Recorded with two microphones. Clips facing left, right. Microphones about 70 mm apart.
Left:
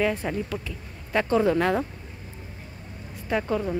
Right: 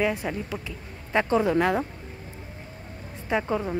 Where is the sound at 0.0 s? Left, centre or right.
Centre.